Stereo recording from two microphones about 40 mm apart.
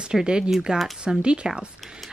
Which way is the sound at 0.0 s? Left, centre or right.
Right.